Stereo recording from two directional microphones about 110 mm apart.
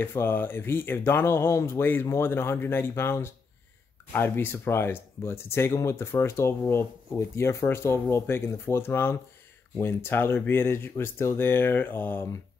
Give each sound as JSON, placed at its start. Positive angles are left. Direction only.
{"t": 0.0, "sound": "speech", "side_deg": 20}